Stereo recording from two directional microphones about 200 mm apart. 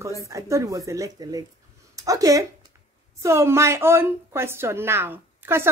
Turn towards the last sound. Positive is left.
turn(degrees=-10)  # may be behind; listen again after turning